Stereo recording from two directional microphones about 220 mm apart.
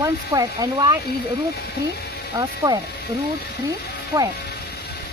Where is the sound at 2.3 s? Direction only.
15° right (ahead or behind).